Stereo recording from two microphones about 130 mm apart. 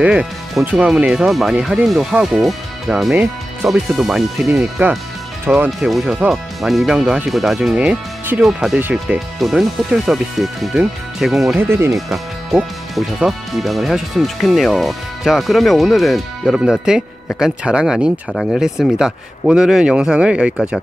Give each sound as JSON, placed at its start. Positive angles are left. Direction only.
{"t": 0.0, "sound": "speech", "side_deg": -5}
{"t": 5.7, "sound": "speech", "side_deg": 0}
{"t": 8.7, "sound": "speech", "side_deg": -15}
{"t": 9.0, "sound": "speech", "side_deg": 0}
{"t": 11.5, "sound": "speech", "side_deg": -20}
{"t": 12.1, "sound": "speech", "side_deg": 0}